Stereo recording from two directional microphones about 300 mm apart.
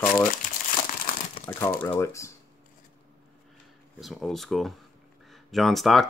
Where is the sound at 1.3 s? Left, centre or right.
Centre.